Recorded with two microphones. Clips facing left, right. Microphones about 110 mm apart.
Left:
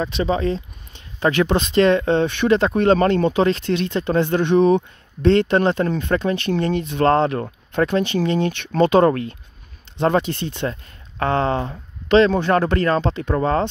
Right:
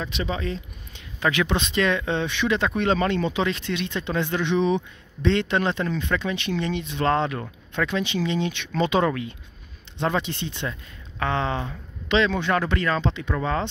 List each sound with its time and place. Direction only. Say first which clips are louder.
0.0 s speech: left 8 dB; 35° left (ahead or behind)